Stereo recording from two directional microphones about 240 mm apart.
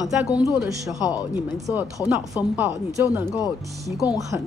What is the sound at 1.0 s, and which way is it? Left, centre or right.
Speech, centre.